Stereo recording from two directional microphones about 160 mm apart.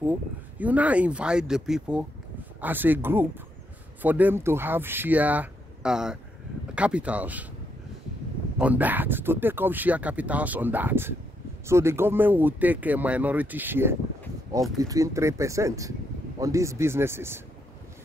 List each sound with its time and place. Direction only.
0.6 s speech: 10° right (ahead or behind)
8.5 s speech: 10° right (ahead or behind)